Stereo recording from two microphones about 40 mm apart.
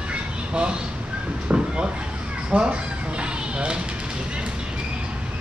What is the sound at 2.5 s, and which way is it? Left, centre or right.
Speech, right.